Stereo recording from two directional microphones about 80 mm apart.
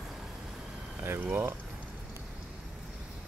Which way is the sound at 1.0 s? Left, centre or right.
Right.